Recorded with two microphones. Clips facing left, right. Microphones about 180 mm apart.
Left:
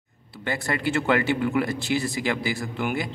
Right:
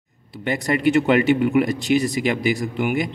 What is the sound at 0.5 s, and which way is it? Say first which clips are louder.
A man's voice: right 7 dB; 20° right (ahead or behind).